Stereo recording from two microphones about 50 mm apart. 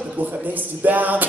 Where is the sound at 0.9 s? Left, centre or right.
Right.